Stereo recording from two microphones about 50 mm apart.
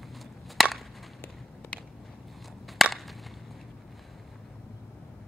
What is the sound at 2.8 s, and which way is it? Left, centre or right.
Chop, centre.